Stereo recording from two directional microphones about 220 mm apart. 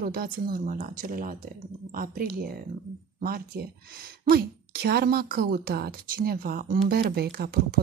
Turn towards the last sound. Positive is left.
turn(degrees=-45)  # may be behind; listen again after turning